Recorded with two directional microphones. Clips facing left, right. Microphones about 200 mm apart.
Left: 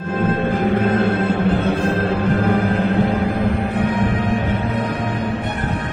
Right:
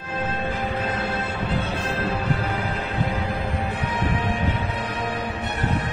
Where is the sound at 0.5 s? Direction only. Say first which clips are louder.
Left 10 dB; 55° left (ahead or behind).